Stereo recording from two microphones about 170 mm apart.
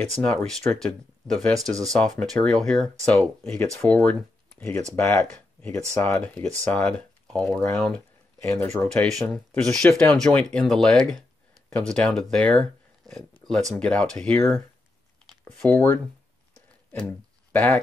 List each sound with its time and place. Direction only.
0.2 s speech: 5° left (ahead or behind)
8.4 s speech: 15° left (ahead or behind)
8.8 s speech: 5° left (ahead or behind)
17.5 s speech: 10° left (ahead or behind)